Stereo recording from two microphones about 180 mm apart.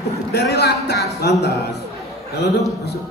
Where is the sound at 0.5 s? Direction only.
65° left (ahead or behind).